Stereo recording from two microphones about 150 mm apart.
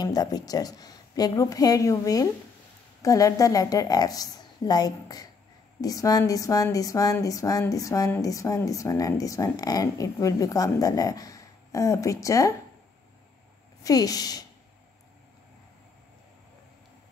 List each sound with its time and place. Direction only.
0.0 s speech: 25° left (ahead or behind)
13.8 s speech: 25° left (ahead or behind)